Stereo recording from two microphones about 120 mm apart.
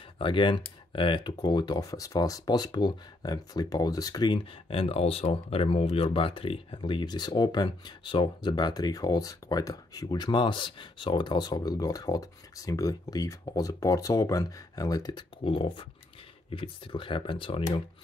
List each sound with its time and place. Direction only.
0.2 s speech: 45° left (ahead or behind)
15.4 s speech: 45° left (ahead or behind)